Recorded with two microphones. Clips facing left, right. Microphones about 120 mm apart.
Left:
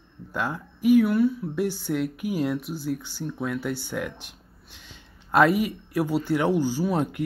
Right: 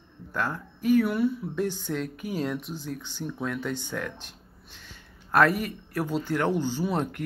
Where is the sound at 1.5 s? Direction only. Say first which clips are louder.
Left 3 dB; 10° left (ahead or behind).